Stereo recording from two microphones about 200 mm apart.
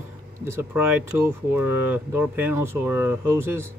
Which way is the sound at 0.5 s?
10° right (ahead or behind).